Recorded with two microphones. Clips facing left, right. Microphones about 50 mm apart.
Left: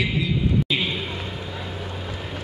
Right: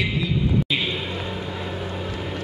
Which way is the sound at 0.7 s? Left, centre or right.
Centre.